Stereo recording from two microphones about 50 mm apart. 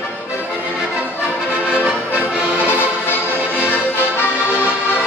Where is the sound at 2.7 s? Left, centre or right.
Left.